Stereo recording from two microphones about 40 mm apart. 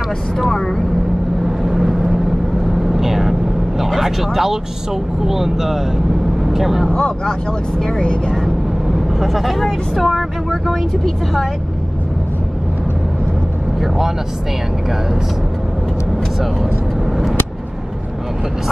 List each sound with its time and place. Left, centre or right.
0.5 s speech: centre
1.4 s vehicle: centre
3.8 s speech: centre
6.9 s speech: centre
8.9 s speech: centre
13.7 s speech: centre